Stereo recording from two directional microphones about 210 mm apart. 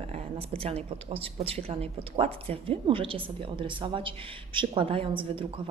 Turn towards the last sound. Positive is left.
turn(degrees=-25)  # may be behind; listen again after turning